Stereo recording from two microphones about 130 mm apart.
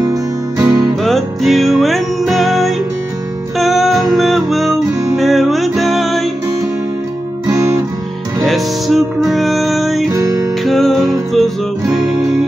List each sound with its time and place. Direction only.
0.0 s music: 30° right (ahead or behind)
1.0 s music: centre (ahead or behind)
7.4 s music: 25° right (ahead or behind)
8.4 s music: centre (ahead or behind)
10.0 s music: 25° right (ahead or behind)
10.6 s music: centre (ahead or behind)